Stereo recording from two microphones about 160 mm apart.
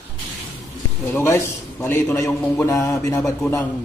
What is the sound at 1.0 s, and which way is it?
Speech, 15° left (ahead or behind).